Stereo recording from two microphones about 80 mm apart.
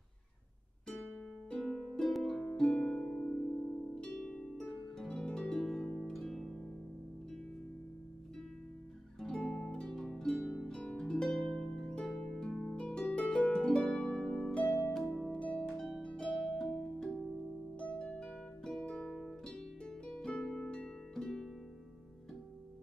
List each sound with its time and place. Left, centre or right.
0.8 s music: centre
1.6 s harp: centre
9.2 s music: centre
10.7 s harp: centre
15.0 s harp: centre
15.3 s harp: centre
17.7 s music: centre